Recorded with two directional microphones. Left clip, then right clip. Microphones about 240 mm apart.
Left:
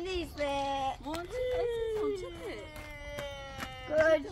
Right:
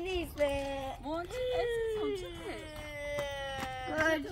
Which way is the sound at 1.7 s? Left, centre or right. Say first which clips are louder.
Left 1 dB; centre.